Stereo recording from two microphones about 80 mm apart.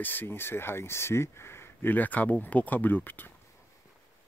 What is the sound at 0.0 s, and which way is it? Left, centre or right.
Speech, left.